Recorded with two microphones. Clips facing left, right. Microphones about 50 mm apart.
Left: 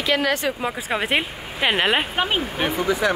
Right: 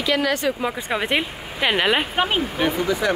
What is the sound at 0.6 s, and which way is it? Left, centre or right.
Speech, centre.